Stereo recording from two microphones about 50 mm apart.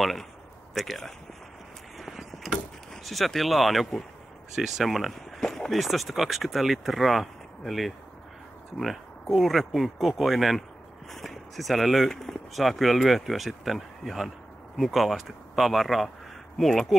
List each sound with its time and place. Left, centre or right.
0.0 s speech: centre
2.0 s vehicle: centre
2.9 s speech: centre
5.4 s a sound: centre
5.8 s speech: centre